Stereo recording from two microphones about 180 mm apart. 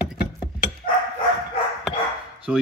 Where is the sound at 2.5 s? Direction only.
5° right (ahead or behind).